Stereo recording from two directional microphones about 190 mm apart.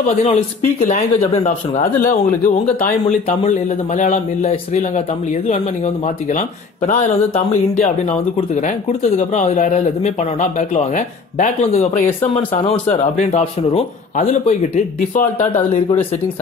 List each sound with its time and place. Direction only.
0.7 s speech: 40° left (ahead or behind)
4.1 s speech: 35° left (ahead or behind)
9.0 s speech: 40° left (ahead or behind)
12.9 s speech: 30° left (ahead or behind)